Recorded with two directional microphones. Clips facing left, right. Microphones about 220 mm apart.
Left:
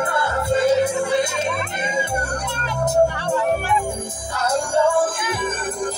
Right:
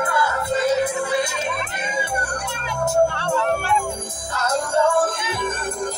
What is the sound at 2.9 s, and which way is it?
Speech, 15° left (ahead or behind).